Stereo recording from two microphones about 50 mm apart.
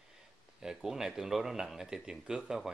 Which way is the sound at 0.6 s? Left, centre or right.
Centre.